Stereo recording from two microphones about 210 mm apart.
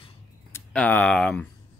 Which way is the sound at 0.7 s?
5° left (ahead or behind).